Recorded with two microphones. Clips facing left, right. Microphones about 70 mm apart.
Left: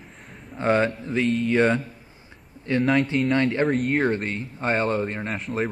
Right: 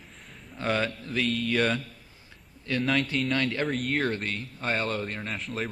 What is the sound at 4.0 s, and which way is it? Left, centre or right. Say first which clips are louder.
A man's voice: left 5 dB; left.